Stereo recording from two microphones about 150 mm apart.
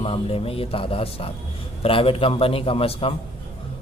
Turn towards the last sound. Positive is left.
turn(degrees=40)  # may be behind; listen again after turning